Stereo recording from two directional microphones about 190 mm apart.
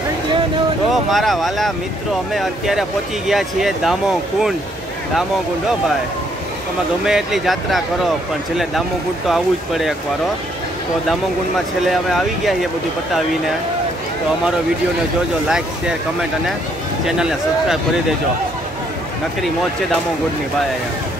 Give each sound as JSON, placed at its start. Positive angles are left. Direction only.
{"t": 0.9, "sound": "speech", "side_deg": 0}
{"t": 7.1, "sound": "speech", "side_deg": 0}
{"t": 9.3, "sound": "speech", "side_deg": 0}
{"t": 11.9, "sound": "speech", "side_deg": 0}
{"t": 17.2, "sound": "speech", "side_deg": -5}